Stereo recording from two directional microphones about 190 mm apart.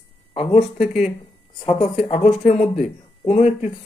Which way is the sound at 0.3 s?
30° left (ahead or behind).